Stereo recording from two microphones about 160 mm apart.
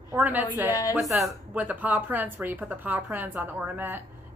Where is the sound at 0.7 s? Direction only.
20° left (ahead or behind).